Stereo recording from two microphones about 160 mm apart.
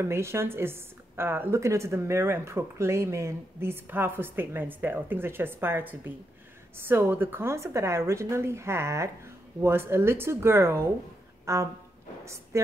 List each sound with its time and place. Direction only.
0.0 s a woman's voice: 15° right (ahead or behind)
11.4 s music: 20° right (ahead or behind)